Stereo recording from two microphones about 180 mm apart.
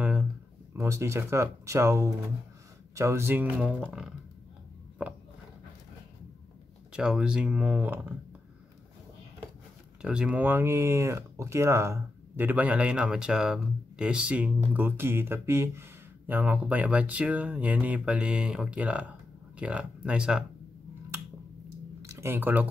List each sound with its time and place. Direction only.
0.0 s a sound: 10° right (ahead or behind)
0.7 s speech: 15° right (ahead or behind)
6.9 s speech: 5° right (ahead or behind)
10.0 s speech: 5° right (ahead or behind)
22.0 s speech: 15° right (ahead or behind)